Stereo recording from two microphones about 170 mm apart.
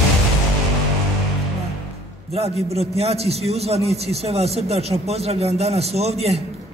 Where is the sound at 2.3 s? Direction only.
40° right (ahead or behind).